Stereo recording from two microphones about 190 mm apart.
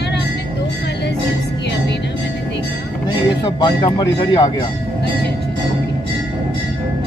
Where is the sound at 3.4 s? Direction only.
25° left (ahead or behind).